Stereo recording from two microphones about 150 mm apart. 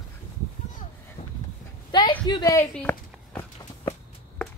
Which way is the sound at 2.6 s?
15° left (ahead or behind).